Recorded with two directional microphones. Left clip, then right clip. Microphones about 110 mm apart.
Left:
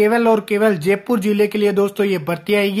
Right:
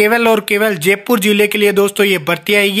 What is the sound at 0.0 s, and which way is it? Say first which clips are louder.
Speech: right 3 dB; 10° right (ahead or behind).